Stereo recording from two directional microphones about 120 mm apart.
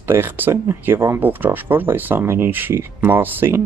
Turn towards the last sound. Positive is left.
turn(degrees=-15)  # may be behind; listen again after turning